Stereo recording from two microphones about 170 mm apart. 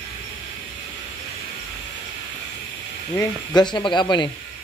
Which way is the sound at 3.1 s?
25° left (ahead or behind).